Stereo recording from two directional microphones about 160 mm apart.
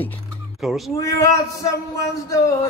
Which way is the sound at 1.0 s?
20° left (ahead or behind).